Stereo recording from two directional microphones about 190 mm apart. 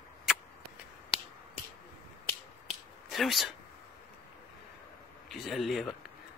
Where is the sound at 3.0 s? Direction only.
Centre (ahead or behind).